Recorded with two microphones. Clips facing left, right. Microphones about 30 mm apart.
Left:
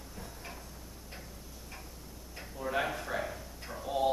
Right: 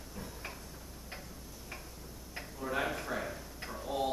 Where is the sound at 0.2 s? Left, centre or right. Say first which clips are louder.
Right 2 dB; centre.